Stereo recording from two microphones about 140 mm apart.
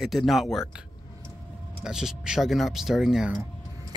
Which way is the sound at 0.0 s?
Centre (ahead or behind).